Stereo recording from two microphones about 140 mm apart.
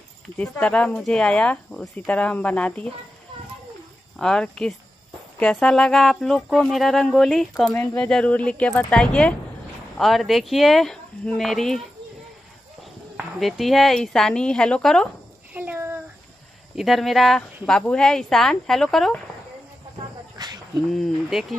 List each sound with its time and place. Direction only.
0.4 s speech: 10° left (ahead or behind)
4.2 s speech: 5° left (ahead or behind)
13.1 s speech: 5° right (ahead or behind)
15.5 s a sound: 15° right (ahead or behind)
16.7 s speech: centre (ahead or behind)
20.3 s cricket: 30° right (ahead or behind)
20.9 s speech: centre (ahead or behind)